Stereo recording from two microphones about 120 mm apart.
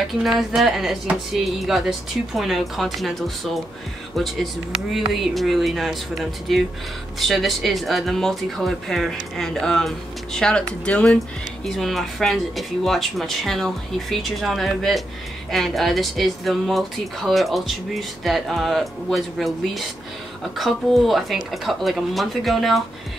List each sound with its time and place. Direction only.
0.2 s speech: centre (ahead or behind)